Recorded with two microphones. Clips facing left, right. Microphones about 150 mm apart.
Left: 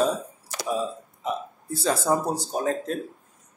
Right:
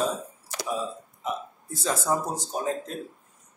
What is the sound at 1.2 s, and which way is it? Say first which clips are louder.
Speech: left 2 dB; 30° left (ahead or behind).